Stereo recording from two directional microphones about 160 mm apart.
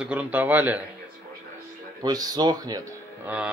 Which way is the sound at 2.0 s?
25° right (ahead or behind).